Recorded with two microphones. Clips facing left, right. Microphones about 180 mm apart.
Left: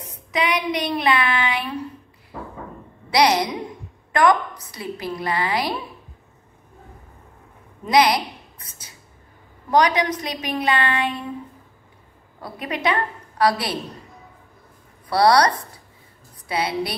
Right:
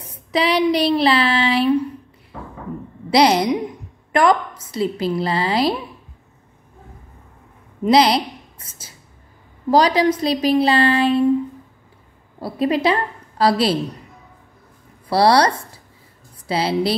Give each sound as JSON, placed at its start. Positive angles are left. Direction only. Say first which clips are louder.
{"t": 0.3, "sound": "child singing", "louder": "right 6 dB", "side_deg": -30}
{"t": 3.1, "sound": "a woman's voice", "louder": "right 4 dB", "side_deg": -25}
{"t": 7.8, "sound": "a woman's voice", "louder": "right 3 dB", "side_deg": -25}
{"t": 12.4, "sound": "a woman's voice", "louder": "right 10 dB", "side_deg": -30}
{"t": 15.0, "sound": "a woman's voice", "louder": "right 2 dB", "side_deg": -25}